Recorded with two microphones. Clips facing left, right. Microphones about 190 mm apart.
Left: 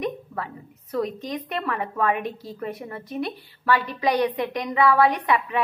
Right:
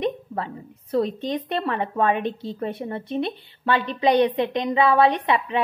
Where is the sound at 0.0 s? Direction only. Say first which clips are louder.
Right 3 dB; 25° right (ahead or behind).